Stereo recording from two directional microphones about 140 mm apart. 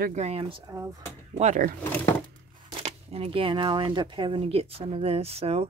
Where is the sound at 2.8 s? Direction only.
45° right (ahead or behind).